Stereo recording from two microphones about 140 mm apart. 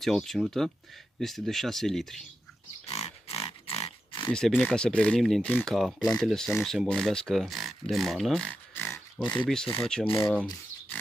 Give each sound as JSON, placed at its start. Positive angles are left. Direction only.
{"t": 0.0, "sound": "speech", "side_deg": 5}
{"t": 2.9, "sound": "pig", "side_deg": 45}
{"t": 4.6, "sound": "speech", "side_deg": 10}
{"t": 10.0, "sound": "speech", "side_deg": 35}
{"t": 10.3, "sound": "a sound", "side_deg": 10}